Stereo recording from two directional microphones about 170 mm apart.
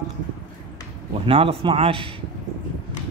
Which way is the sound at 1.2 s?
35° right (ahead or behind).